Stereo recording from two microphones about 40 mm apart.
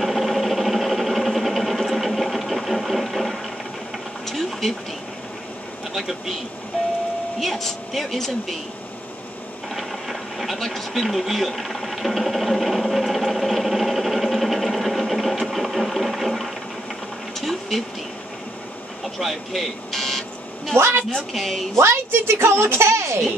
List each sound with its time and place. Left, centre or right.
0.0 s a sound: centre
4.3 s vehicle: centre
5.9 s speech: centre
7.3 s speech: centre
9.8 s a sound: centre
19.1 s buzzer: centre
20.7 s a woman's voice: right
21.3 s speech: centre
21.8 s a woman's voice: right